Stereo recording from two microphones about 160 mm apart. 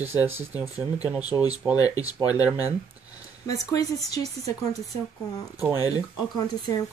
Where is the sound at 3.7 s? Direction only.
25° left (ahead or behind).